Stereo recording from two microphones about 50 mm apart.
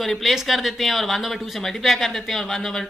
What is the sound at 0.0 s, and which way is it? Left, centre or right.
Speech, centre.